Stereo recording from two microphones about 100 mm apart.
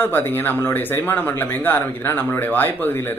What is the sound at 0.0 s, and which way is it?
Speech, 20° left (ahead or behind).